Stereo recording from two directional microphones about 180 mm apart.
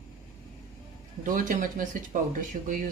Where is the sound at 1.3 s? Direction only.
50° right (ahead or behind).